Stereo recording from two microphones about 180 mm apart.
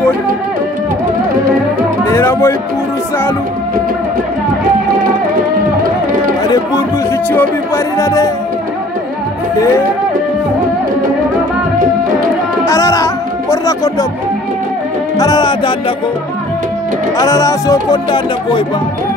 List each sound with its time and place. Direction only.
2.0 s music: 15° left (ahead or behind)
7.3 s speech: 15° left (ahead or behind)
12.6 s music: 15° left (ahead or behind)
15.1 s speech: 20° left (ahead or behind)
17.2 s speech: 20° left (ahead or behind)